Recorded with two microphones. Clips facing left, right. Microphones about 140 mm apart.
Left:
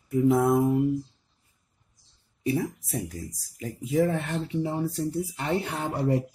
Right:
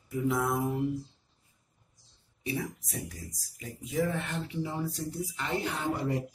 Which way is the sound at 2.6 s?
40° left (ahead or behind).